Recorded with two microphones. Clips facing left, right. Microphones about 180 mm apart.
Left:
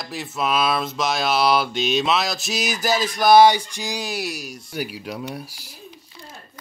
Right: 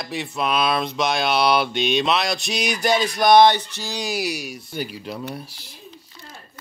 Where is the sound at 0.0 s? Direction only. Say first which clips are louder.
Right 1 dB; centre (ahead or behind).